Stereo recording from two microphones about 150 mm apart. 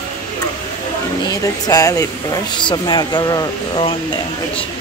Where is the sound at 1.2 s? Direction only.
25° left (ahead or behind).